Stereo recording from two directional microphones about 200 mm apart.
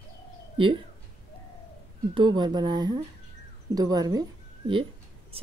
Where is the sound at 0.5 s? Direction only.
25° right (ahead or behind).